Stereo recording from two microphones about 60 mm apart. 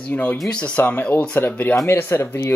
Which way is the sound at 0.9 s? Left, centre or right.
Left.